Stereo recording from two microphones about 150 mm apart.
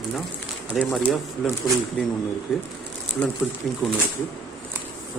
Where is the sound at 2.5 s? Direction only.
5° right (ahead or behind).